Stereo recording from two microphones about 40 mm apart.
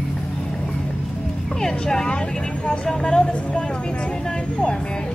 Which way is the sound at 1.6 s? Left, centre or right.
Centre.